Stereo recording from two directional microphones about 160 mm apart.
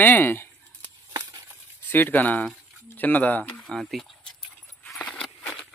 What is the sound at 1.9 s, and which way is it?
Speech, 10° left (ahead or behind).